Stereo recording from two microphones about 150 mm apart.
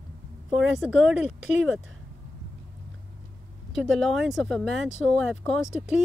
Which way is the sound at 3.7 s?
Centre (ahead or behind).